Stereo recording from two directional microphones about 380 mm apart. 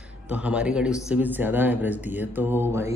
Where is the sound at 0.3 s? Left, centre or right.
Centre.